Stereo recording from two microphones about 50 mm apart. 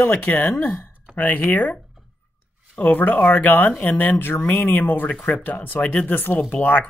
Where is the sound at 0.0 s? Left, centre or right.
Left.